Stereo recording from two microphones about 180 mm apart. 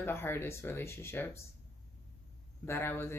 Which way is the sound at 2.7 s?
10° left (ahead or behind).